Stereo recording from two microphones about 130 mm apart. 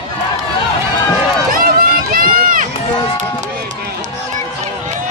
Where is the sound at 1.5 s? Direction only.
90° right.